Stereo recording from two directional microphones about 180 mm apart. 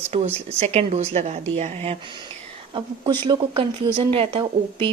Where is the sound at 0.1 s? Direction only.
35° right (ahead or behind).